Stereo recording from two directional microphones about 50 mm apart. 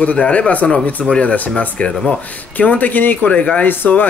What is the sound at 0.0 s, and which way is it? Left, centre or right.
Speech, left.